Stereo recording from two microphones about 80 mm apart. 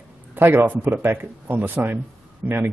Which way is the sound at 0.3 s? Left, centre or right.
Right.